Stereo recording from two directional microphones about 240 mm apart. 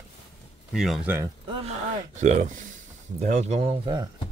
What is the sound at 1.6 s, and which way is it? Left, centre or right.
Speech, right.